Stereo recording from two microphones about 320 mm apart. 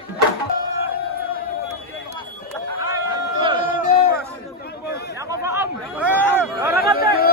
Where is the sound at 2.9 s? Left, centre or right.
Centre.